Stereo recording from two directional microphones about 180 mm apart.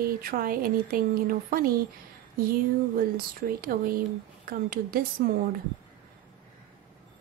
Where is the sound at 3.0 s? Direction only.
55° right (ahead or behind).